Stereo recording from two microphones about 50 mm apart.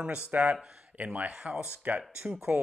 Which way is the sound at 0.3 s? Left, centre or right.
Right.